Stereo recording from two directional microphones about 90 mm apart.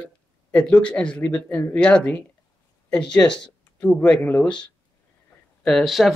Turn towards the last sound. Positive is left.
turn(degrees=0)  # may be behind; listen again after turning